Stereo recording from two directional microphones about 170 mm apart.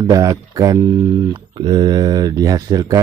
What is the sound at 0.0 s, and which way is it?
Speech, 20° right (ahead or behind).